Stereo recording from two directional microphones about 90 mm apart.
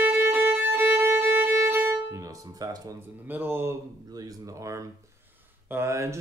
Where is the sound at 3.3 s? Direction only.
20° right (ahead or behind).